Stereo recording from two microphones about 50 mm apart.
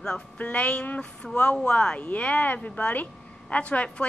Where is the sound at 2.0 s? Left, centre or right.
Left.